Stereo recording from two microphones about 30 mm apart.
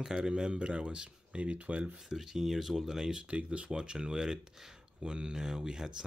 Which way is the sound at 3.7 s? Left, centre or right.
Right.